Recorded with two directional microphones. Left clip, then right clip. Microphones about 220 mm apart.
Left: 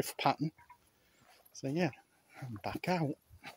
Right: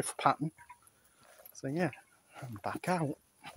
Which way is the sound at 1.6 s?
10° left (ahead or behind).